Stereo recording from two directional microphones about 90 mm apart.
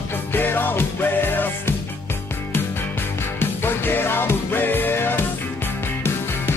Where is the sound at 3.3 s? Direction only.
25° left (ahead or behind).